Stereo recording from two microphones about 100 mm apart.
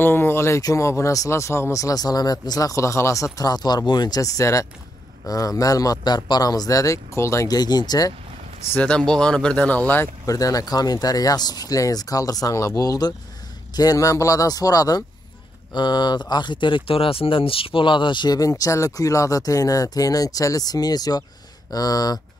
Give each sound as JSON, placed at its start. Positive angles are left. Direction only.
{"t": 0.0, "sound": "speech", "side_deg": 20}
{"t": 3.3, "sound": "speech", "side_deg": 40}
{"t": 8.7, "sound": "speech", "side_deg": 10}
{"t": 10.2, "sound": "speech", "side_deg": 35}